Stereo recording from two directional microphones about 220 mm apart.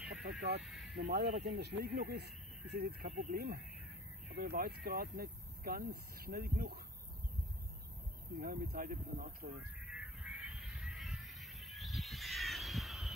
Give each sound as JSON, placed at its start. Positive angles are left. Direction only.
{"t": 0.2, "sound": "vehicle", "side_deg": -50}
{"t": 0.8, "sound": "speech", "side_deg": -50}
{"t": 8.4, "sound": "speech", "side_deg": -40}
{"t": 9.8, "sound": "a sound", "side_deg": 0}